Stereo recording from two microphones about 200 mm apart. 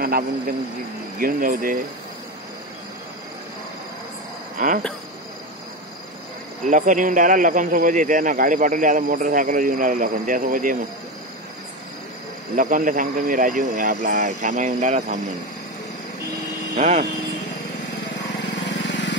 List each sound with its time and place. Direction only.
1.2 s speech: 45° right (ahead or behind)
4.6 s speech: 45° right (ahead or behind)
6.7 s a man's voice: 40° right (ahead or behind)
12.5 s a man's voice: 40° right (ahead or behind)
16.7 s speech: 35° right (ahead or behind)
18.7 s vehicle: 65° left (ahead or behind)